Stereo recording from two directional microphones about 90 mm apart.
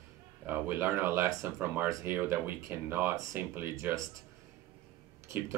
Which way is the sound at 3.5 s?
25° right (ahead or behind).